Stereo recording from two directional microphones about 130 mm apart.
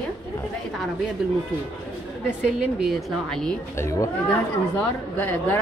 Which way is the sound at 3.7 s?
25° left (ahead or behind).